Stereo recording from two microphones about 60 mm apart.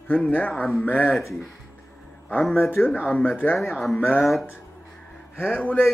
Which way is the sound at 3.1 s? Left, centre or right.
Left.